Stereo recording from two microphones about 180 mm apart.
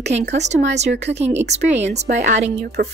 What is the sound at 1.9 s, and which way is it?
Speech, 40° right (ahead or behind).